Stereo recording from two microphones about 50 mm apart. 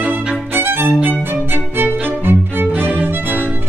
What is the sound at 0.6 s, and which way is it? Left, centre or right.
Violin, right.